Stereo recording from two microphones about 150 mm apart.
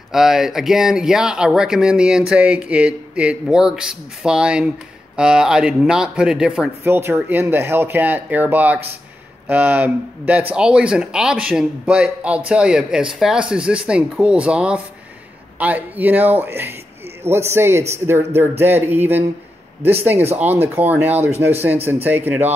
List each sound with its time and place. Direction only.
0.1 s speech: 5° right (ahead or behind)
6.8 s speech: 15° right (ahead or behind)
20.3 s speech: 10° right (ahead or behind)